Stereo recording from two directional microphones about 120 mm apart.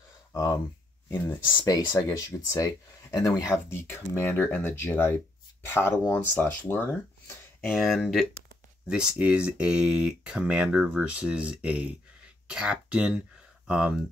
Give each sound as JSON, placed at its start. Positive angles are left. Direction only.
{"t": 0.3, "sound": "speech", "side_deg": 30}
{"t": 3.7, "sound": "speech", "side_deg": 20}
{"t": 7.7, "sound": "speech", "side_deg": 0}